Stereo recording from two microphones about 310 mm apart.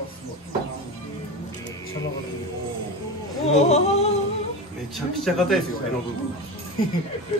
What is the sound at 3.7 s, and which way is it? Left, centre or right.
Speech, left.